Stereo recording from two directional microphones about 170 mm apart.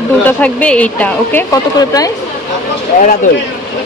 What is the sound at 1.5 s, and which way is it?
Speech, 20° left (ahead or behind).